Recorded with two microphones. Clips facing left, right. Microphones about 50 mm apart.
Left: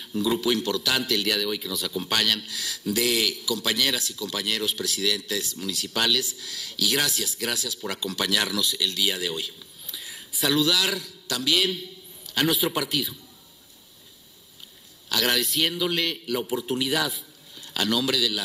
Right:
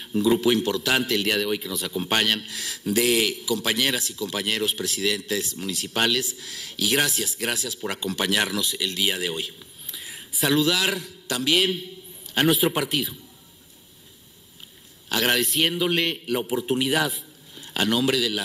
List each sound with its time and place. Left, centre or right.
0.0 s a man's voice: right
15.0 s a man's voice: right